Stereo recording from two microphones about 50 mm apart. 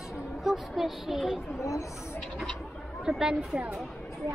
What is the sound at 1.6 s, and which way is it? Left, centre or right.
Speech, left.